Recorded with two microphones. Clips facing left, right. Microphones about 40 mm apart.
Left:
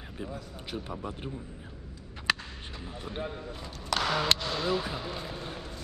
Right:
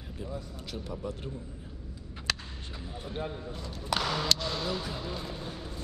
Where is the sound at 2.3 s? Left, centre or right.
Centre.